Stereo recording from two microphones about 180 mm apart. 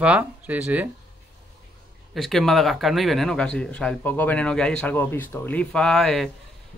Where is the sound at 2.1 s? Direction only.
Centre (ahead or behind).